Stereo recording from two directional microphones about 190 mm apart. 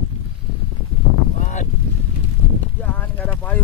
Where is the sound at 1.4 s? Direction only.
40° left (ahead or behind).